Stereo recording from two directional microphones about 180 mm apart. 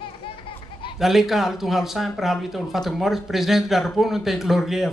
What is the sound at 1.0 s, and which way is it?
Speech, centre (ahead or behind).